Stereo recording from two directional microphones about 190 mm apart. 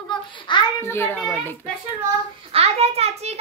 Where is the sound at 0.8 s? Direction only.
10° left (ahead or behind).